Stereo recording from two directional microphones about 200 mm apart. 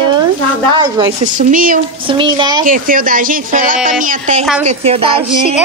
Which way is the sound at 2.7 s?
45° right (ahead or behind).